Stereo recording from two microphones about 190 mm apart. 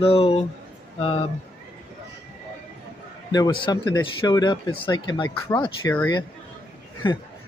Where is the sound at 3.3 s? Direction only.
20° left (ahead or behind).